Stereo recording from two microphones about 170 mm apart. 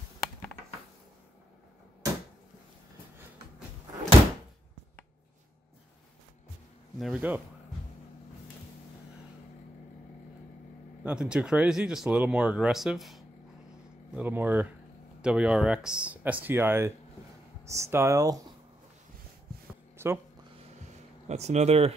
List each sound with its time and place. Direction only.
7.0 s speech: 5° right (ahead or behind)
11.1 s speech: 5° right (ahead or behind)
20.0 s speech: 15° right (ahead or behind)
21.3 s speech: 40° right (ahead or behind)